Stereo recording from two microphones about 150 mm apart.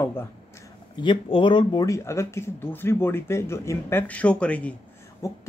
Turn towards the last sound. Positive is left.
turn(degrees=20)  # may be behind; listen again after turning